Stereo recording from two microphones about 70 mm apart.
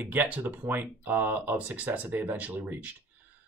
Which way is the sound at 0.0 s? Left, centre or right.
Right.